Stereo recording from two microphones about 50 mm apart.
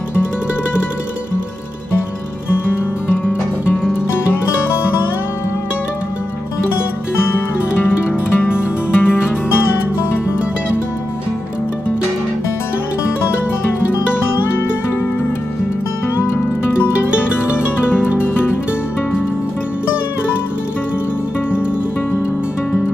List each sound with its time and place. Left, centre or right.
3.3 s music: left
7.3 s music: left